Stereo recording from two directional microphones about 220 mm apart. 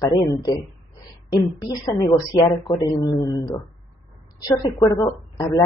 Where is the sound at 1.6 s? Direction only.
15° left (ahead or behind).